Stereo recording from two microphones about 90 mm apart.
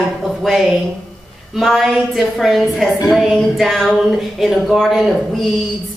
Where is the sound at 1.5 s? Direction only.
Centre (ahead or behind).